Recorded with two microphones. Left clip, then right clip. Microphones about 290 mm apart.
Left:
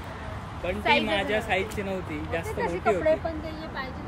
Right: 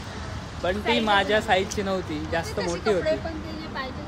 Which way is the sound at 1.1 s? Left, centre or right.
Centre.